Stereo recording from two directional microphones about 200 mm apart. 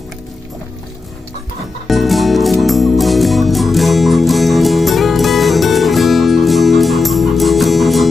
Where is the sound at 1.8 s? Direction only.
Centre (ahead or behind).